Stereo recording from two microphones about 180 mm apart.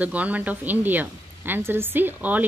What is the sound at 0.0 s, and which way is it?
Speech, 10° right (ahead or behind).